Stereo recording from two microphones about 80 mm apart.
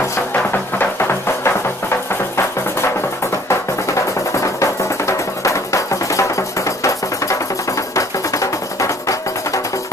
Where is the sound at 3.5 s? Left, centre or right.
Left.